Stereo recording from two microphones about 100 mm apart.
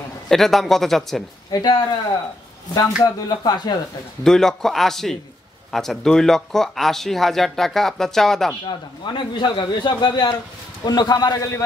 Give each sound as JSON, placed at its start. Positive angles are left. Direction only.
{"t": 0.3, "sound": "speech", "side_deg": 0}
{"t": 1.5, "sound": "speech", "side_deg": 45}
{"t": 4.2, "sound": "speech", "side_deg": 5}
{"t": 8.6, "sound": "speech", "side_deg": 50}